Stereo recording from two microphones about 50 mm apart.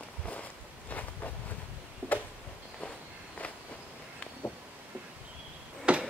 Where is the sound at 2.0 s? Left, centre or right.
Right.